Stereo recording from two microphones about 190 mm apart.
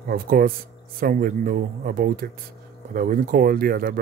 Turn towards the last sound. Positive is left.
turn(degrees=-50)  # may be behind; listen again after turning